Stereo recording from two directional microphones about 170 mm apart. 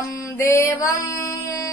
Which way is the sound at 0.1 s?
20° left (ahead or behind).